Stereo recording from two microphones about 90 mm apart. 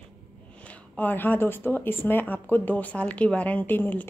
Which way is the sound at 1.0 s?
20° left (ahead or behind).